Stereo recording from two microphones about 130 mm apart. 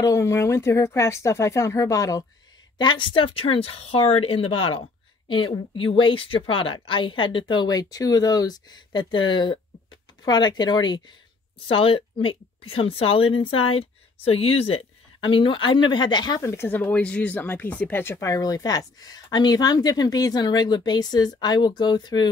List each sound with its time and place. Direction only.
0.0 s speech: 25° left (ahead or behind)
2.8 s a woman's voice: 40° left (ahead or behind)
11.6 s a woman's voice: 45° left (ahead or behind)
16.4 s speech: 15° left (ahead or behind); by 22.3 s 35° left (ahead or behind)